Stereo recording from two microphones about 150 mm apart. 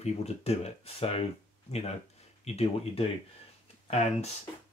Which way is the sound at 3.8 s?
45° left (ahead or behind).